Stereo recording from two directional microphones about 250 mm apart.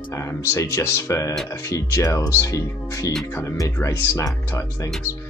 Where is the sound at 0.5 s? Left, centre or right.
Centre.